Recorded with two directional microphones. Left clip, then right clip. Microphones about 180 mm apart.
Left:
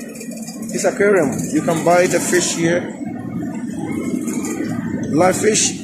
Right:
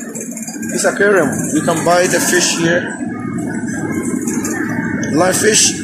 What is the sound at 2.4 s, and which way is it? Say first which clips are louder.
Speech: right 3 dB; 30° left (ahead or behind).